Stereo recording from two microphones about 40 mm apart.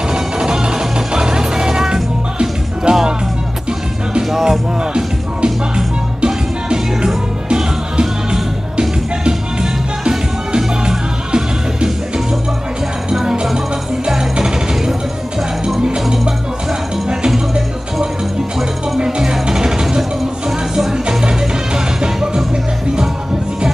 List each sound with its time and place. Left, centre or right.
0.1 s music: centre
4.3 s music: centre
5.8 s music: right
13.1 s music: centre
18.9 s music: centre